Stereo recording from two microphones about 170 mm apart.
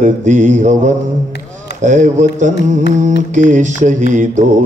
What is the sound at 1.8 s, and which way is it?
Mantra, 45° right (ahead or behind).